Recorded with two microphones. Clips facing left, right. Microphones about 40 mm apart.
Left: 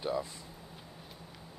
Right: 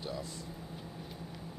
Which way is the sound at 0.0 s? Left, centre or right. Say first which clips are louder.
Left 6 dB; left.